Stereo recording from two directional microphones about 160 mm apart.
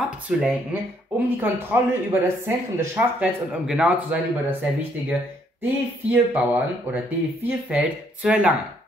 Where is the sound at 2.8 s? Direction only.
10° right (ahead or behind).